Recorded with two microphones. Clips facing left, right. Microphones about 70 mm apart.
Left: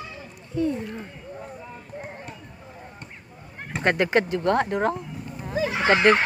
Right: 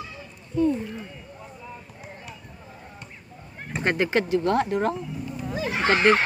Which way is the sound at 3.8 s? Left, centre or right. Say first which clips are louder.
Left 2 dB; left.